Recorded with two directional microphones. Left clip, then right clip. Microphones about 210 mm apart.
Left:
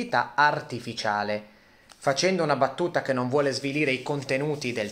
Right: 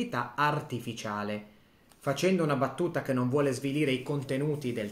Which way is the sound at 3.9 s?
15° right (ahead or behind).